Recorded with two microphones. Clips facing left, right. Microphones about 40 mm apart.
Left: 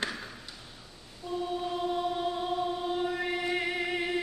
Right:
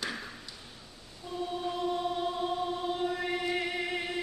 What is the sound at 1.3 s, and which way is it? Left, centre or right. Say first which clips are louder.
Choir: left 2 dB; centre.